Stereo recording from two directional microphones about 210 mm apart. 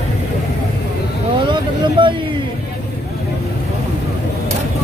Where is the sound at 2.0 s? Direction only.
25° right (ahead or behind).